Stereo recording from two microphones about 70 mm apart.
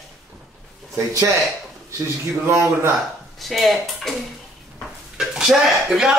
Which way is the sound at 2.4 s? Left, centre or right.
Right.